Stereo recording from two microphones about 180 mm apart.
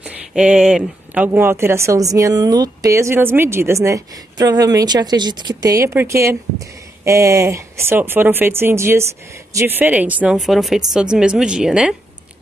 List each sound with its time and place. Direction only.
0.0 s a woman's voice: 5° right (ahead or behind)